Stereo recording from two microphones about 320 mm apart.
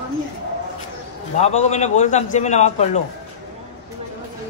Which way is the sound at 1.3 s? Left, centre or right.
Left.